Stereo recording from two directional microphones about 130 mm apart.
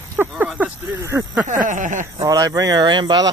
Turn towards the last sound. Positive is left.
turn(degrees=-30)  # may be behind; listen again after turning